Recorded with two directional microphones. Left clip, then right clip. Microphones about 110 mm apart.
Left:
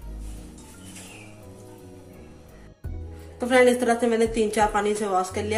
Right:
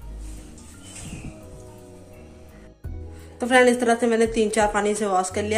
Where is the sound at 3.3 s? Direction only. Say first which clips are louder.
Right 1 dB; 25° right (ahead or behind).